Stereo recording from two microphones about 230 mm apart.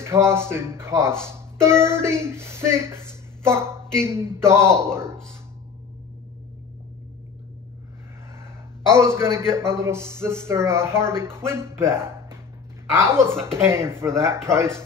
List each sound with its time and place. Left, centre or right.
0.0 s a man's voice: centre
8.9 s a man's voice: centre